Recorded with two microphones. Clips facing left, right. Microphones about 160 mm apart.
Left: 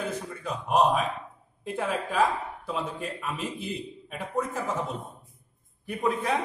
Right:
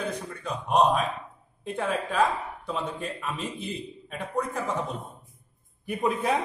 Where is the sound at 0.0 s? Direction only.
5° left (ahead or behind).